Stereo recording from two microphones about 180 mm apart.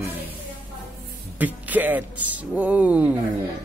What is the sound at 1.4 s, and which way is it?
Speech, 10° right (ahead or behind).